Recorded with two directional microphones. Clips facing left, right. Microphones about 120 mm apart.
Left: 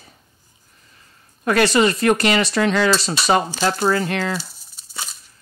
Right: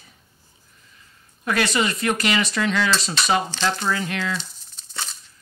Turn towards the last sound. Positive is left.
turn(degrees=10)  # may be behind; listen again after turning